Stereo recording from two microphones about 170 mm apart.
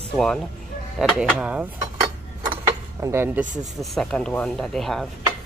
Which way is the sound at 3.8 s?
Centre (ahead or behind).